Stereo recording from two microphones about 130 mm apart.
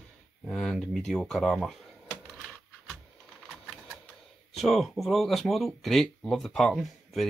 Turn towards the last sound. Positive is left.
turn(degrees=0)  # may be behind; listen again after turning